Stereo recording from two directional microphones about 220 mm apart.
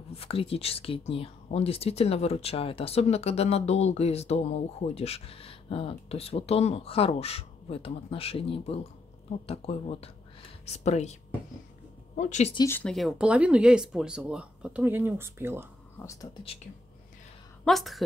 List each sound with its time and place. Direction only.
0.1 s speech: 25° left (ahead or behind)
12.2 s speech: 30° left (ahead or behind)
12.5 s speech: 10° left (ahead or behind); by 15.7 s 10° right (ahead or behind)
17.6 s speech: centre (ahead or behind)